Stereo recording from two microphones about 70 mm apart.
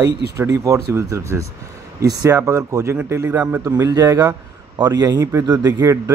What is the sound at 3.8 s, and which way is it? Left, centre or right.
Speech, right.